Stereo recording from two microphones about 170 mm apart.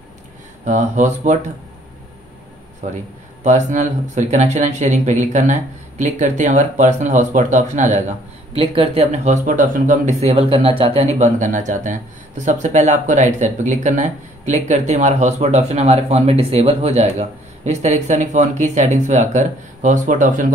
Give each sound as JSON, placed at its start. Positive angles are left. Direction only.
{"t": 0.7, "sound": "speech", "side_deg": -45}
{"t": 3.4, "sound": "speech", "side_deg": -45}